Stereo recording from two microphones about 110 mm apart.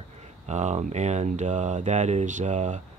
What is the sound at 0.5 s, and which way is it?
Speech, 90° right.